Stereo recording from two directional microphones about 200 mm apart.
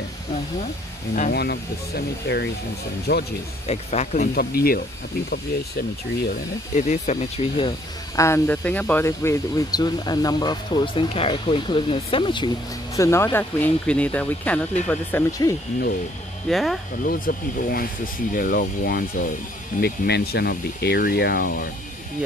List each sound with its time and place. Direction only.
1.3 s speech: 55° left (ahead or behind)
3.6 s speech: 35° left (ahead or behind)
4.6 s speech: 50° left (ahead or behind)
6.8 s speech: 35° left (ahead or behind)
8.2 s speech: 10° left (ahead or behind)
12.9 s speech: 15° left (ahead or behind)
16.4 s speech: centre (ahead or behind)
17.0 s speech: 45° left (ahead or behind)